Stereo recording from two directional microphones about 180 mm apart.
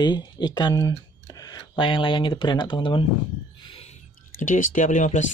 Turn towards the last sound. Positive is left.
turn(degrees=45)  # may be behind; listen again after turning